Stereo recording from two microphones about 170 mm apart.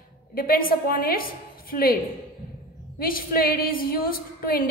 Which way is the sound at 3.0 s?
60° left (ahead or behind).